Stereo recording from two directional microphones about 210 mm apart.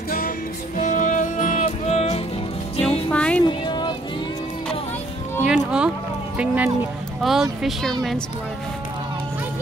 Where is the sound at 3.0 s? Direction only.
5° left (ahead or behind).